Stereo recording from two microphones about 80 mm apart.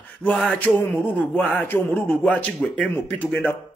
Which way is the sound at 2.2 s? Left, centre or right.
Centre.